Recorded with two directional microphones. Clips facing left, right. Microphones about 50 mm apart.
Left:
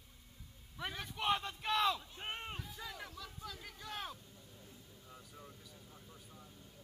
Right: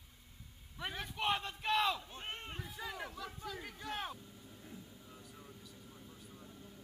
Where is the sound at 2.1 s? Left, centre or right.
Centre.